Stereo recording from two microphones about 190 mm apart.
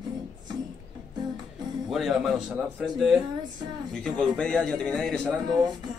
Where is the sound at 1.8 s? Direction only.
Centre (ahead or behind).